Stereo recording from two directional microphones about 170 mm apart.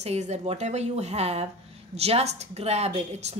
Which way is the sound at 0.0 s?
40° right (ahead or behind).